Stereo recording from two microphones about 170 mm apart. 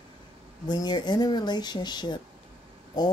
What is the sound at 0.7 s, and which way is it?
Speech, 25° left (ahead or behind).